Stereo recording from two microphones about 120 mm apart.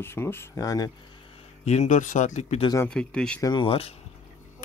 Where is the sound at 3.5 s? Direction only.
50° left (ahead or behind).